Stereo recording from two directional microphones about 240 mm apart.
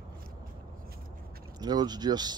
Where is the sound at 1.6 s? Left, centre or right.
Centre.